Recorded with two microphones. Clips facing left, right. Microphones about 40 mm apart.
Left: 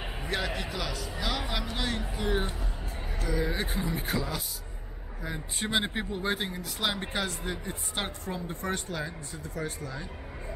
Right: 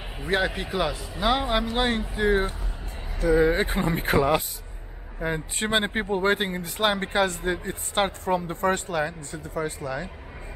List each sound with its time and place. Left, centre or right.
0.3 s speech: right
5.7 s speech: right
6.2 s speech: right